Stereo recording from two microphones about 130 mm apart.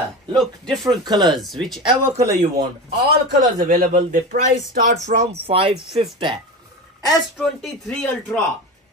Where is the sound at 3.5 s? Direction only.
90° right.